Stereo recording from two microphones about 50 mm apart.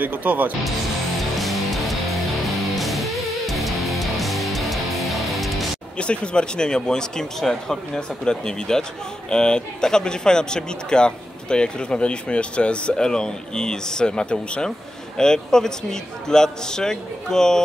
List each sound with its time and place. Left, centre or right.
0.0 s speech: right
1.4 s music: centre
5.9 s speech: centre